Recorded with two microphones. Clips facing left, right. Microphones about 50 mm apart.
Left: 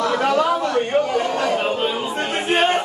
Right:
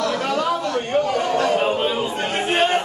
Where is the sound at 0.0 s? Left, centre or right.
Centre.